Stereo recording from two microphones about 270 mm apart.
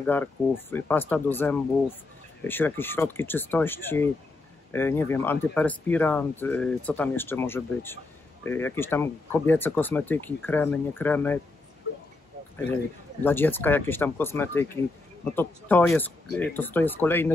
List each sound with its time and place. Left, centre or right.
0.0 s speech: centre
13.2 s speech: centre